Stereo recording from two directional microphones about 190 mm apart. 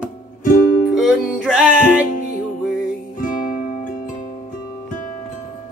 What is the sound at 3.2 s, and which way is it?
Music, 45° left (ahead or behind).